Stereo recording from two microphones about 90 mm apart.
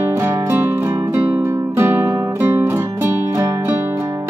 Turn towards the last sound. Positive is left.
turn(degrees=-30)  # may be behind; listen again after turning